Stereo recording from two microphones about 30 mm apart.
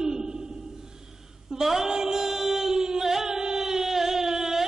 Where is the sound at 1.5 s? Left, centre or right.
Centre.